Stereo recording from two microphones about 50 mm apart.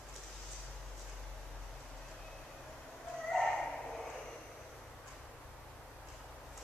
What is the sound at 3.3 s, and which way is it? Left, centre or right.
Dog, centre.